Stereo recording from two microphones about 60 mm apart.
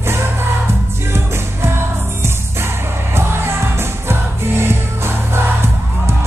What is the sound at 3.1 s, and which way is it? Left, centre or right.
Music, right.